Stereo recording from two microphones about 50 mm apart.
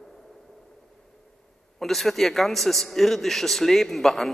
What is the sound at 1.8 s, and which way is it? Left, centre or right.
Speech, centre.